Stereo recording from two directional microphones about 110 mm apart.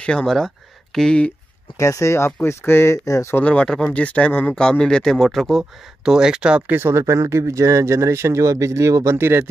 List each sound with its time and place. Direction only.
0.0 s speech: 5° left (ahead or behind)
1.8 s speech: 30° left (ahead or behind)
3.4 s speech: 10° left (ahead or behind); by 6.8 s 10° right (ahead or behind)
6.8 s speech: 25° right (ahead or behind)